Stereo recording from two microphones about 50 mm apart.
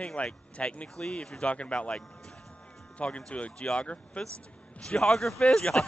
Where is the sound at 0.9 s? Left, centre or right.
Centre.